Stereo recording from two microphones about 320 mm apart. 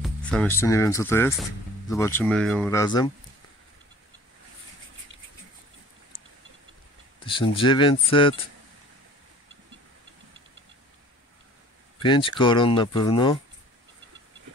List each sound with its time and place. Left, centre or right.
0.0 s speech: centre
7.2 s speech: centre
12.0 s speech: centre